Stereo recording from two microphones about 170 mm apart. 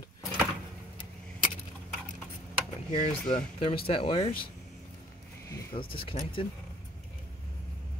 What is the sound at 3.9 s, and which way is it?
Speech, 30° left (ahead or behind).